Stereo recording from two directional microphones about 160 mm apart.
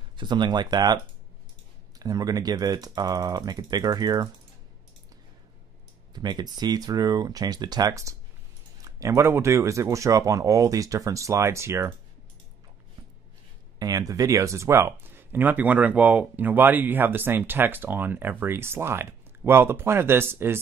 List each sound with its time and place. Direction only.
0.2 s speech: 25° right (ahead or behind)
6.1 s speech: 25° right (ahead or behind)
13.7 s speech: 25° right (ahead or behind)